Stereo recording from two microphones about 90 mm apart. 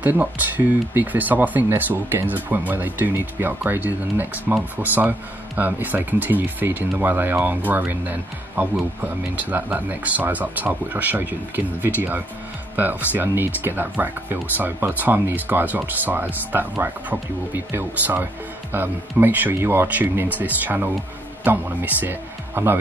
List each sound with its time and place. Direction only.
0.0 s speech: 20° right (ahead or behind)